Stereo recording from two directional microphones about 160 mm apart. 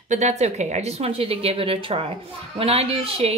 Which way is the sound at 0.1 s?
45° right (ahead or behind).